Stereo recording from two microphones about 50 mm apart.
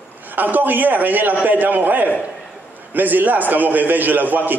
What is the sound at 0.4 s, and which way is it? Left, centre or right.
A man's voice, right.